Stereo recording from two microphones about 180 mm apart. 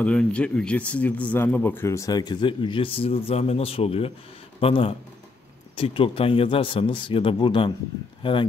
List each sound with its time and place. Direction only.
0.0 s a man's voice: 5° left (ahead or behind); by 8.5 s 30° left (ahead or behind)